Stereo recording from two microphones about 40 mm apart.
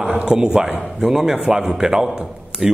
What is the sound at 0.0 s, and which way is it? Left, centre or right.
A man's voice, right.